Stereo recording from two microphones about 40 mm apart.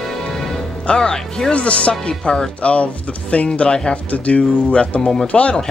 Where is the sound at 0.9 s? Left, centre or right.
Left.